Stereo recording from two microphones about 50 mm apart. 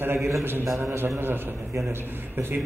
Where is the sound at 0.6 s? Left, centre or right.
Right.